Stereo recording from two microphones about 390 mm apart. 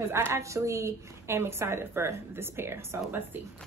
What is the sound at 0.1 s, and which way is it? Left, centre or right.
A woman's voice, centre.